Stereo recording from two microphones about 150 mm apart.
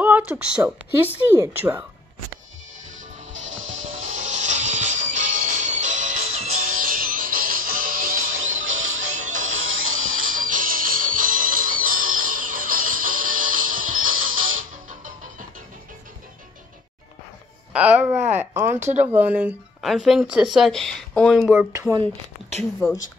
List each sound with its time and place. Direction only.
0.0 s speech: 10° right (ahead or behind)
3.3 s music: 55° right (ahead or behind)
9.1 s music: 55° right (ahead or behind)
17.7 s speech: 10° right (ahead or behind)
19.8 s speech: centre (ahead or behind)
21.5 s speech: 15° right (ahead or behind)
22.6 s speech: centre (ahead or behind)